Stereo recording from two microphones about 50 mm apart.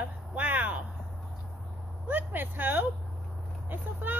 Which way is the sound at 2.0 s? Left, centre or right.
Right.